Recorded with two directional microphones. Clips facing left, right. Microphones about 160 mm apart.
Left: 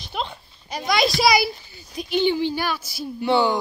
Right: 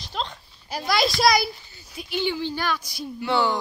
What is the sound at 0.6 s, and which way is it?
Speech, 5° right (ahead or behind).